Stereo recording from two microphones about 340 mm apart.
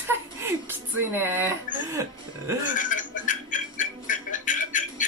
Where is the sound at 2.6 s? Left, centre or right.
Left.